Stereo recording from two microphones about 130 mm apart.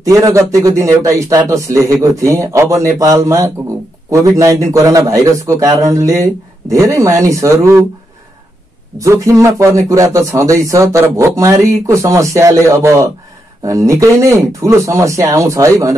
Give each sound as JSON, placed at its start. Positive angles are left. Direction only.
{"t": 0.0, "sound": "speech", "side_deg": -25}
{"t": 8.9, "sound": "speech", "side_deg": -25}